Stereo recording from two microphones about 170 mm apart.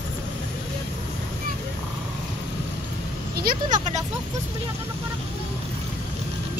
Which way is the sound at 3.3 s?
60° right (ahead or behind).